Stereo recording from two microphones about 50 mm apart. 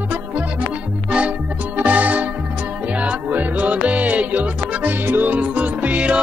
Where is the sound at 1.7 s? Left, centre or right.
Right.